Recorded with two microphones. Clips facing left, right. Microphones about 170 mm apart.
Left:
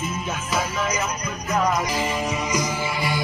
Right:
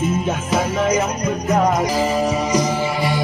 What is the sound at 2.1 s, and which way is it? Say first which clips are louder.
Music: right 7 dB; 35° right (ahead or behind).